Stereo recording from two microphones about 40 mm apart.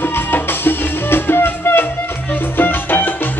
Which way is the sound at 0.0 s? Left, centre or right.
Left.